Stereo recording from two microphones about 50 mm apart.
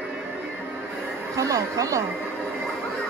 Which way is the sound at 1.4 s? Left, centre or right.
Right.